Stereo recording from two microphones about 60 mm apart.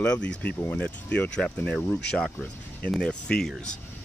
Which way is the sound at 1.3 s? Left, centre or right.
Centre.